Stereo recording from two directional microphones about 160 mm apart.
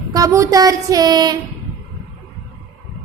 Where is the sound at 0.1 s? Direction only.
20° right (ahead or behind).